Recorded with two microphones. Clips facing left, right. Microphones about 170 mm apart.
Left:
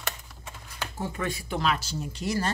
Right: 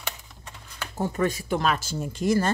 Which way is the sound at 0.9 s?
40° right (ahead or behind).